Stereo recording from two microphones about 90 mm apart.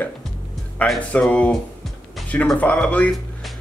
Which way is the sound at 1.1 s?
15° left (ahead or behind).